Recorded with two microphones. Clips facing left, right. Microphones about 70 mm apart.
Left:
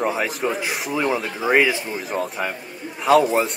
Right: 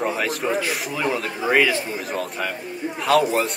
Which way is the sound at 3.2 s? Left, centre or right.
Left.